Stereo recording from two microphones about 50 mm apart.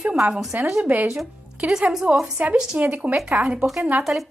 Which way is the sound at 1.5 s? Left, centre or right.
Centre.